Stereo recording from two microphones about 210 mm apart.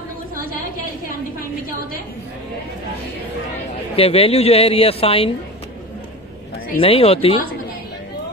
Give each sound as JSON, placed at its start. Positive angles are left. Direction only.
{"t": 3.9, "sound": "a woman's voice", "side_deg": 30}
{"t": 6.8, "sound": "a woman's voice", "side_deg": 30}